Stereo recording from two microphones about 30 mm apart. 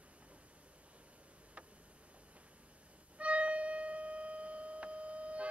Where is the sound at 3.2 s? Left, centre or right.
Right.